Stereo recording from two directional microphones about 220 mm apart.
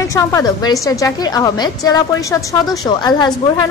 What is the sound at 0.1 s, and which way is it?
A woman's voice, 15° left (ahead or behind).